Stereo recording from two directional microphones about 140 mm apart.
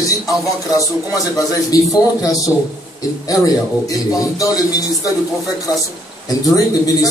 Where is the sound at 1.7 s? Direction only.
25° left (ahead or behind).